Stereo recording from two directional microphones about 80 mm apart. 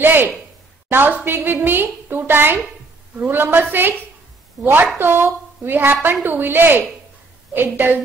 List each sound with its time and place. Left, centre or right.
0.0 s a woman's voice: right
4.9 s a woman's voice: right